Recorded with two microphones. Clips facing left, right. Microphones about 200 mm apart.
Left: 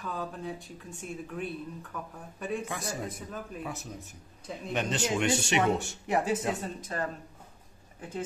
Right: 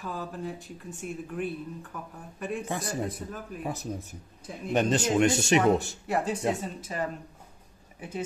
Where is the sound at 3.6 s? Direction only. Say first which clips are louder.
Right 5 dB; 35° right (ahead or behind).